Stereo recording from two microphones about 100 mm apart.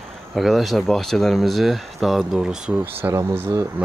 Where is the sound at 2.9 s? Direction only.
20° right (ahead or behind).